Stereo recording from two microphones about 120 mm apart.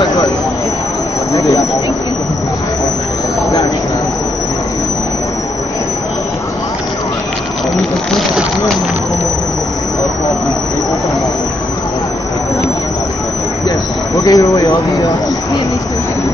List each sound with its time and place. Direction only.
0.0 s vehicle: 35° left (ahead or behind)
1.3 s speech: 25° left (ahead or behind)
14.2 s a sound: 30° left (ahead or behind)